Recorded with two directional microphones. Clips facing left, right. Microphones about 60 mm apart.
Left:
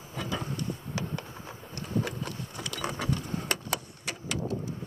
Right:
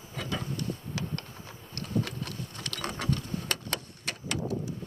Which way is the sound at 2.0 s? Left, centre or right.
Centre.